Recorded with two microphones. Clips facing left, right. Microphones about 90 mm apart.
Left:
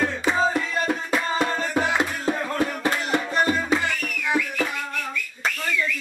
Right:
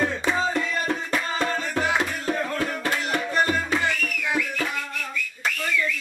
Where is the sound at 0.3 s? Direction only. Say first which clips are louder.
Left 2 dB; 5° left (ahead or behind).